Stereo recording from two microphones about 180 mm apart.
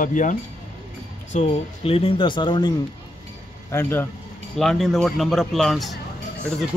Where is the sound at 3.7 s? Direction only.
10° left (ahead or behind).